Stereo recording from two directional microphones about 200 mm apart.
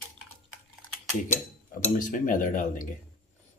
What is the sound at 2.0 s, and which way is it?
Speech, 40° left (ahead or behind).